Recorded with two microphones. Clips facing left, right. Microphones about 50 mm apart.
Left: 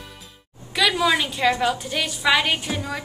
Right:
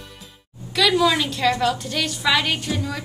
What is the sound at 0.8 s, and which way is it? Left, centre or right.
A woman's voice, centre.